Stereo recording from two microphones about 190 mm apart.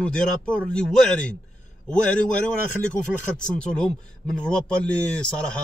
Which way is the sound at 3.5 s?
5° left (ahead or behind).